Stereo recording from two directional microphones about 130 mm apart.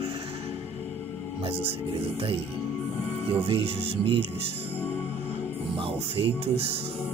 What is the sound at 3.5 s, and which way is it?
Speech, 50° right (ahead or behind).